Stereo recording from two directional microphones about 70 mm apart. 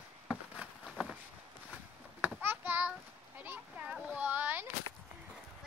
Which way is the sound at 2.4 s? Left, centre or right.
Right.